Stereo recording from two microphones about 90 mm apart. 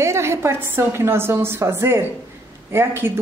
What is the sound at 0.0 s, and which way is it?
A woman's voice, 30° right (ahead or behind).